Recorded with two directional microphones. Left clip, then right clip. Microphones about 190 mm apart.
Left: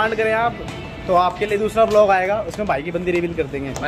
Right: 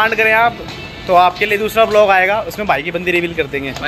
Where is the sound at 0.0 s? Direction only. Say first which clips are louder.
Right 6 dB; 10° right (ahead or behind).